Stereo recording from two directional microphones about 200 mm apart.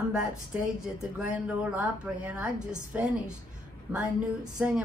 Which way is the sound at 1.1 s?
5° right (ahead or behind).